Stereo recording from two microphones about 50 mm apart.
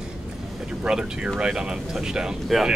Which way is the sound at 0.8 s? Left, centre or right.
Centre.